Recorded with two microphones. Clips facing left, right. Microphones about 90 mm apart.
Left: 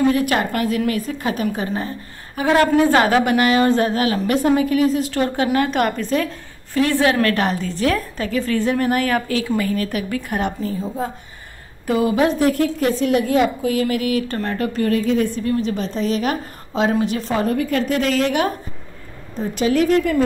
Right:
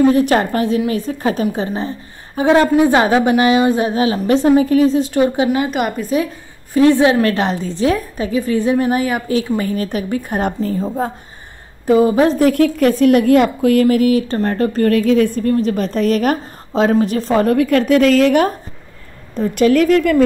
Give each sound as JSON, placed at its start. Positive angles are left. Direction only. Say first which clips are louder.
{"t": 0.1, "sound": "a woman's voice", "louder": "right 5 dB", "side_deg": -30}
{"t": 1.5, "sound": "a woman's voice", "louder": "right 3 dB", "side_deg": -20}
{"t": 6.7, "sound": "a woman's voice", "louder": "right 6 dB", "side_deg": -20}
{"t": 9.6, "sound": "a woman's voice", "louder": "right 2 dB", "side_deg": -25}
{"t": 11.8, "sound": "a woman's voice", "louder": "right 5 dB", "side_deg": -30}
{"t": 12.4, "sound": "a woman's voice", "louder": "right 5 dB", "side_deg": -75}
{"t": 13.8, "sound": "a woman's voice", "louder": "right 7 dB", "side_deg": -35}
{"t": 14.9, "sound": "a woman's voice", "louder": "right 5 dB", "side_deg": -70}
{"t": 15.3, "sound": "a woman's voice", "louder": "right 5 dB", "side_deg": -45}
{"t": 17.5, "sound": "a woman's voice", "louder": "right 8 dB", "side_deg": -65}
{"t": 19.3, "sound": "a woman's voice", "louder": "right 6 dB", "side_deg": -65}